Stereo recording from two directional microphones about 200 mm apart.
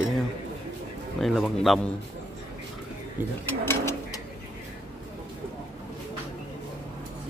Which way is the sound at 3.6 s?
10° left (ahead or behind).